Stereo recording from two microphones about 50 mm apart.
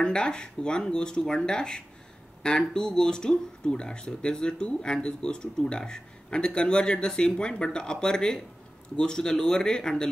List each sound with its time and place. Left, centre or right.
0.0 s speech: centre